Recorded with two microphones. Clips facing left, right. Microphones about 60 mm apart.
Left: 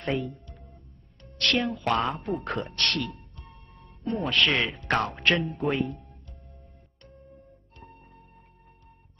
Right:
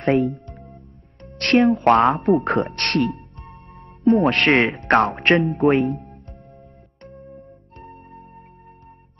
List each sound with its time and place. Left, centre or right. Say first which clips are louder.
0.0 s speech: right 11 dB; right
5.5 s speech: right 10 dB; right
7.7 s music: right 10 dB; right